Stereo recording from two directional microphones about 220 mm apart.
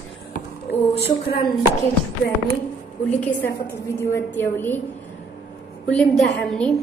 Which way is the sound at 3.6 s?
10° left (ahead or behind).